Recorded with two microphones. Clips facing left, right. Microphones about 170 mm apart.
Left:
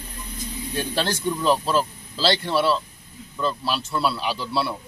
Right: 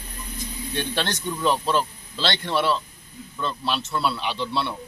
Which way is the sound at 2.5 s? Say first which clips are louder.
Left 2 dB; 5° left (ahead or behind).